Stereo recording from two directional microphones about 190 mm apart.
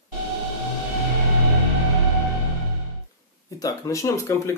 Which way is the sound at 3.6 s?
15° left (ahead or behind).